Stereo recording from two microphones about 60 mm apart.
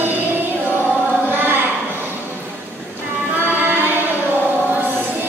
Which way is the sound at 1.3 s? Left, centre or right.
Right.